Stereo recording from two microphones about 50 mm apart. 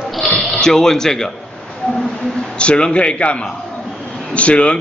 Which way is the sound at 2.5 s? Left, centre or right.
Centre.